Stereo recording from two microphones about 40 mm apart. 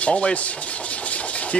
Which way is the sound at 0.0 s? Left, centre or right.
Left.